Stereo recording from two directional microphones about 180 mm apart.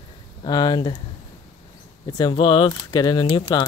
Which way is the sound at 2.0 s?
20° left (ahead or behind).